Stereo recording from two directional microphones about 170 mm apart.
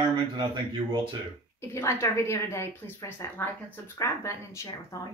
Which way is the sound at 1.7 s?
15° left (ahead or behind).